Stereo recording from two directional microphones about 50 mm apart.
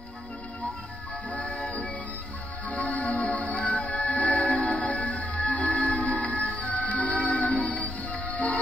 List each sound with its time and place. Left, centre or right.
1.3 s music: left